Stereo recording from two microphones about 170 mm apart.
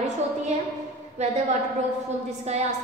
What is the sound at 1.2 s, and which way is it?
Speech, 40° right (ahead or behind).